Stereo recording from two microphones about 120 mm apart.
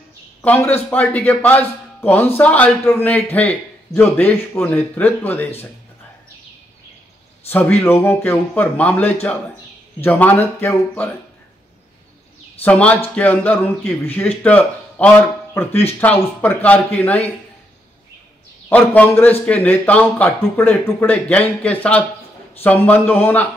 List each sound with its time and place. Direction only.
0.4 s a man's voice: 15° left (ahead or behind)
7.4 s a man's voice: 15° left (ahead or behind)
12.6 s a man's voice: 10° left (ahead or behind)
18.7 s a man's voice: 15° left (ahead or behind)